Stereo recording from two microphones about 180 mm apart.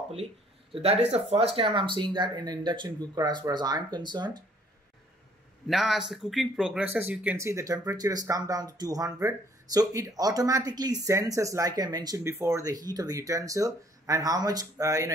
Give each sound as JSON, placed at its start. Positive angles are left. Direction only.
{"t": 0.7, "sound": "speech", "side_deg": -35}
{"t": 5.7, "sound": "speech", "side_deg": 0}